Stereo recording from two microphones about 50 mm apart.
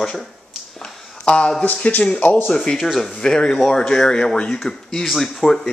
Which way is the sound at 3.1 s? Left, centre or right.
Centre.